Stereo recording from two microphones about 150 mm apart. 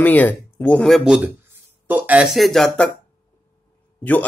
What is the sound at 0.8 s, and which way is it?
Speech, centre (ahead or behind).